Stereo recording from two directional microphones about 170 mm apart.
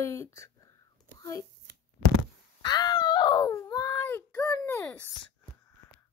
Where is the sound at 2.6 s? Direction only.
25° left (ahead or behind).